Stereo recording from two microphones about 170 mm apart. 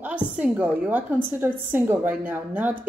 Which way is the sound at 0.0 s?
5° right (ahead or behind).